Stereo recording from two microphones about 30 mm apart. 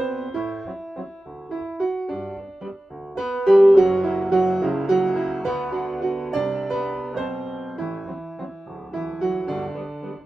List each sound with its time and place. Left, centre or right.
0.0 s music: centre
0.3 s music: centre
2.0 s music: centre
3.2 s music: centre
7.5 s music: centre